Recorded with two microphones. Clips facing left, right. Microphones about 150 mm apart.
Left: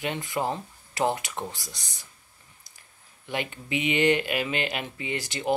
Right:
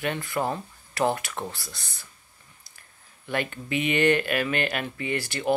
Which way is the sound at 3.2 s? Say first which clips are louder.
Right 3 dB; 15° left (ahead or behind).